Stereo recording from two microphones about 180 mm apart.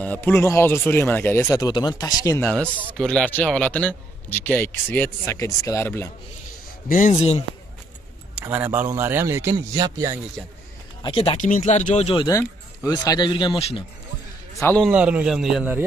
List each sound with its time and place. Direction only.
0.0 s a man's voice: 10° left (ahead or behind)
2.4 s a man's voice: 5° left (ahead or behind)
6.9 s speech: 45° left (ahead or behind)
8.5 s a man's voice: 10° right (ahead or behind)
11.0 s speech: 30° left (ahead or behind)
12.3 s speech: 20° left (ahead or behind)
14.6 s a man's voice: 10° left (ahead or behind)
14.9 s a man's voice: 5° right (ahead or behind)